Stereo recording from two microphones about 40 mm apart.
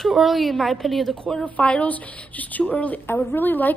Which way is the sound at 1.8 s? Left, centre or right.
Left.